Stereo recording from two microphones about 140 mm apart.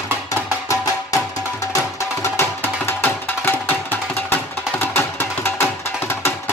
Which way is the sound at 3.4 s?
15° left (ahead or behind).